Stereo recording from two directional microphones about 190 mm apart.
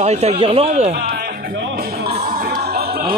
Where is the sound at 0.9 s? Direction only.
50° right (ahead or behind).